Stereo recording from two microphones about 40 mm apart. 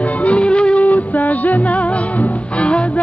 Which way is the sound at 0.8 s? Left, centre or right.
Left.